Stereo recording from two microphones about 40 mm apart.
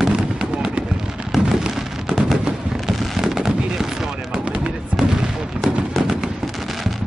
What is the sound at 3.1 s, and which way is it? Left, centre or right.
Fireworks, centre.